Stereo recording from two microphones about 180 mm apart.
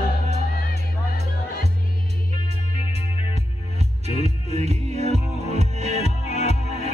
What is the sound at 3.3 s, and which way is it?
Music, 35° right (ahead or behind).